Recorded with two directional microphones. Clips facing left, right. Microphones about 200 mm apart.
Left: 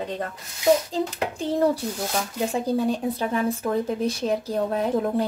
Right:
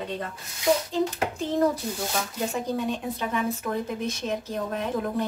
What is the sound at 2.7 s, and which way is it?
Speech, 35° left (ahead or behind).